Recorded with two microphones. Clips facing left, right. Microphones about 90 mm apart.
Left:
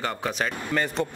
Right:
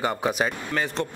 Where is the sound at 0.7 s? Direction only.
Centre (ahead or behind).